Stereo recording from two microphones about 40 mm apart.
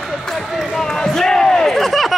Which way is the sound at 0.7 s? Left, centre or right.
Centre.